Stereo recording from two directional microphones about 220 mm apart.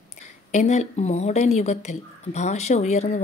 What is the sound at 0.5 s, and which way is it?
A woman's voice, 30° left (ahead or behind).